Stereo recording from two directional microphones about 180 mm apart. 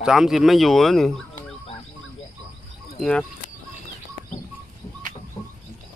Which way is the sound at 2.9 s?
5° left (ahead or behind).